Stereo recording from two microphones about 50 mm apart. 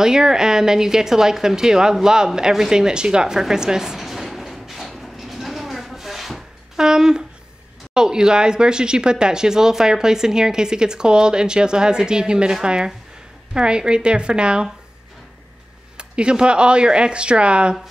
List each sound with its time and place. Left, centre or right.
0.0 s a sound: centre
6.9 s speech: centre
16.0 s speech: centre